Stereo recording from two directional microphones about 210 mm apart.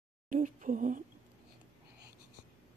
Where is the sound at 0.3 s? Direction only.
40° right (ahead or behind).